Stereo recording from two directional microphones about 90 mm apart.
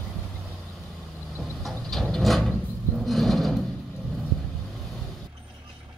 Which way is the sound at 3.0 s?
Centre (ahead or behind).